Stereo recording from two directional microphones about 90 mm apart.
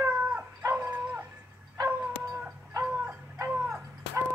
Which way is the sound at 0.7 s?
25° right (ahead or behind).